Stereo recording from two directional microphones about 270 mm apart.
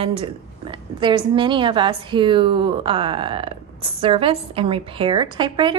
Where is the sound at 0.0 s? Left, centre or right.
Centre.